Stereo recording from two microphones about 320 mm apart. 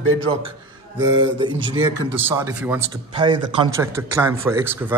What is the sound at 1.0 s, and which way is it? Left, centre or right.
A man's voice, centre.